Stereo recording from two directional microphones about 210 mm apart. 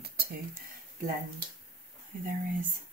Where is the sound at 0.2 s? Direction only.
45° right (ahead or behind).